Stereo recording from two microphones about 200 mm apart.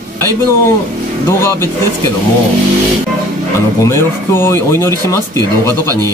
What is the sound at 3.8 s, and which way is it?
Speech, 10° left (ahead or behind).